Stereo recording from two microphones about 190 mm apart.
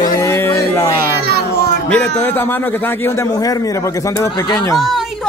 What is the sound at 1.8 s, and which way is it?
A man's voice, 5° left (ahead or behind).